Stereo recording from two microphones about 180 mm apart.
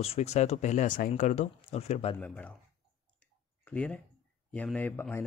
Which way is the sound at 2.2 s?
5° left (ahead or behind).